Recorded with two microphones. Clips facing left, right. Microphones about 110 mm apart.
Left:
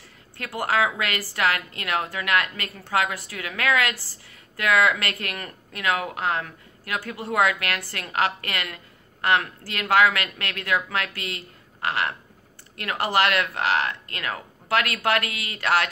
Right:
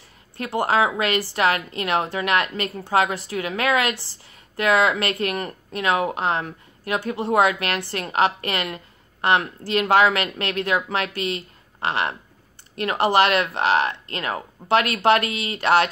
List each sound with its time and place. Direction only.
0.4 s a woman's voice: 25° right (ahead or behind)